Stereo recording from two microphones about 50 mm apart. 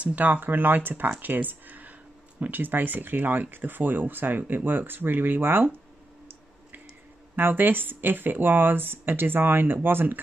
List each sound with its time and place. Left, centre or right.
0.0 s speech: right
7.3 s speech: right